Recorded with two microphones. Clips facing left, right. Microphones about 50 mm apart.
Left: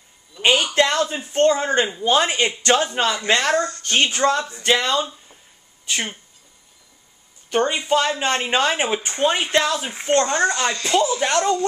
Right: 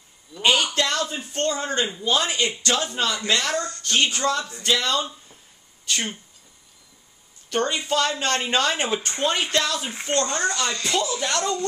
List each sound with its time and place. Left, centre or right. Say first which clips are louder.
0.4 s a man's voice: left 4 dB; left
5.9 s speech: left 1 dB; centre
7.4 s speech: left 4 dB; centre